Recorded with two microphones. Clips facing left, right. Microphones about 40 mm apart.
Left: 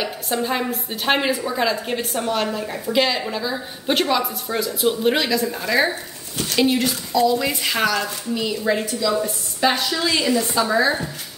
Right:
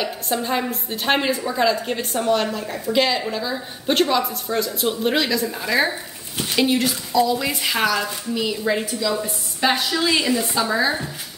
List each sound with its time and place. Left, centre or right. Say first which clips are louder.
0.0 s a woman's voice: even; centre
6.3 s speech: even; right
6.6 s a woman's voice: left 1 dB; centre